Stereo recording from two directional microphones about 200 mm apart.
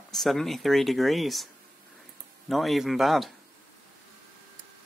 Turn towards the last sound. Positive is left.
turn(degrees=0)  # may be behind; listen again after turning